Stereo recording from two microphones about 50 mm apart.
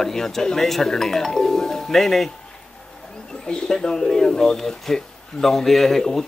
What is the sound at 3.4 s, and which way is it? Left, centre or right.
Speech, centre.